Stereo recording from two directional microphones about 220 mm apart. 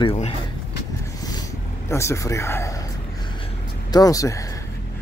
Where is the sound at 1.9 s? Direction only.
15° left (ahead or behind).